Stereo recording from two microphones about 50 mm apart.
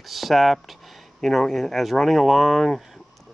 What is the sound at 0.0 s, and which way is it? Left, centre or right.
Speech, centre.